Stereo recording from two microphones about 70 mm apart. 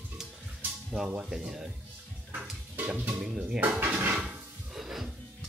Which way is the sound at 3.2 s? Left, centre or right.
Centre.